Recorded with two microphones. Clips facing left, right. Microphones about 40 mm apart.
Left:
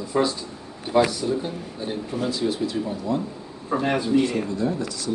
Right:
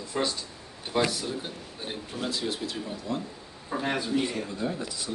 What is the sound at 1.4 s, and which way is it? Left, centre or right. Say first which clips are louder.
Speech: left 8 dB; centre.